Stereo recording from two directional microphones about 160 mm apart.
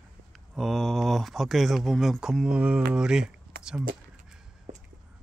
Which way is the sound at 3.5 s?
70° right (ahead or behind).